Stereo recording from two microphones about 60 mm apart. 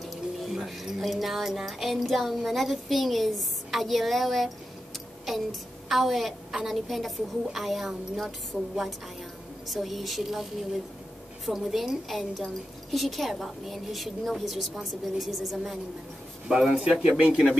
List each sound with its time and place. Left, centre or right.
0.0 s a woman's voice: centre
8.5 s a woman's voice: right
9.7 s a woman's voice: centre
17.2 s speech: centre